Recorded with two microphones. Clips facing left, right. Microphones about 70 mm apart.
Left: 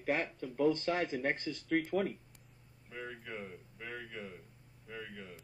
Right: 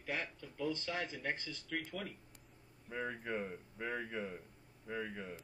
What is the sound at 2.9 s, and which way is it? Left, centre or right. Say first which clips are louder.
Speech: right 4 dB; right.